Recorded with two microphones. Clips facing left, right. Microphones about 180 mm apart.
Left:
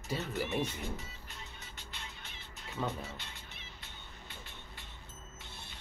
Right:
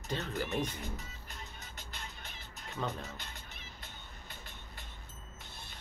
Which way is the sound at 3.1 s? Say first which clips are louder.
Right 1 dB; 45° right (ahead or behind).